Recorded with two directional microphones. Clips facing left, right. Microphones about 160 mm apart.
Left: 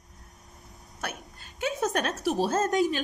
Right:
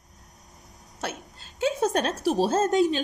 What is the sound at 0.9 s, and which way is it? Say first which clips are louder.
A woman's voice: right 3 dB; 25° right (ahead or behind).